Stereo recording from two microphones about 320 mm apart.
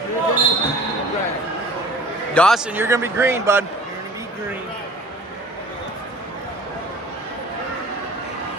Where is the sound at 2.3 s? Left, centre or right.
Centre.